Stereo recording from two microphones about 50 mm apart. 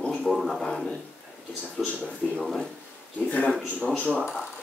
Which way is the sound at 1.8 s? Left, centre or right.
Left.